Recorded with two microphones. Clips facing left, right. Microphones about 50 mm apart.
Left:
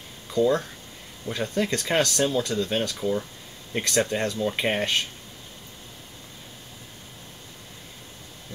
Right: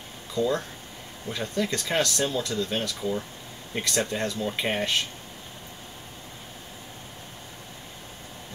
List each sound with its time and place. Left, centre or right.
0.3 s speech: left
3.0 s speech: centre
4.1 s speech: left
4.4 s speech: centre